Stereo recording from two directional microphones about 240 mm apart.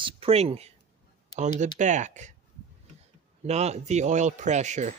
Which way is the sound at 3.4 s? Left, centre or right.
Right.